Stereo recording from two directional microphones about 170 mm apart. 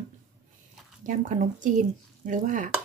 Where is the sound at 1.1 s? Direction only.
50° right (ahead or behind).